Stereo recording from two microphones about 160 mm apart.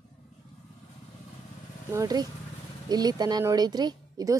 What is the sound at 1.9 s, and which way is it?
Speech, 25° right (ahead or behind).